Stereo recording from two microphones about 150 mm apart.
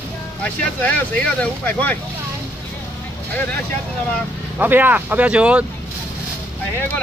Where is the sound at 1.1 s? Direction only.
10° left (ahead or behind).